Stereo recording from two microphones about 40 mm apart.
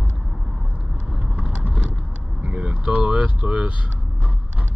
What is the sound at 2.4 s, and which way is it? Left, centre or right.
Speech, right.